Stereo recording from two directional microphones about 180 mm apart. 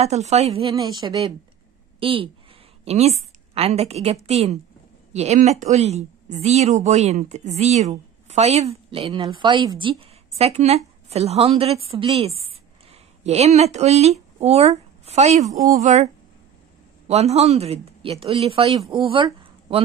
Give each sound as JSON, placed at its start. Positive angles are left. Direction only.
{"t": 0.0, "sound": "a woman's voice", "side_deg": -35}
{"t": 17.1, "sound": "speech", "side_deg": -35}
{"t": 19.0, "sound": "a sound", "side_deg": -30}